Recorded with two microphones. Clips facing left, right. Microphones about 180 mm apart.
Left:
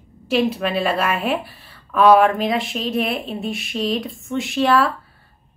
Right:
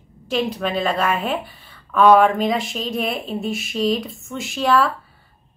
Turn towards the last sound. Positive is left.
turn(degrees=0)  # may be behind; listen again after turning